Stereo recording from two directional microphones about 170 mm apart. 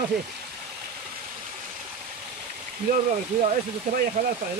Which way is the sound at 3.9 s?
45° right (ahead or behind).